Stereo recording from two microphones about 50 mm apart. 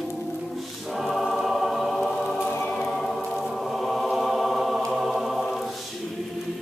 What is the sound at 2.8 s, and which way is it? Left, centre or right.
Music, centre.